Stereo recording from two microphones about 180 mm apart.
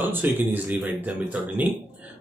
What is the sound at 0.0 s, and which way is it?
Speech, 10° right (ahead or behind).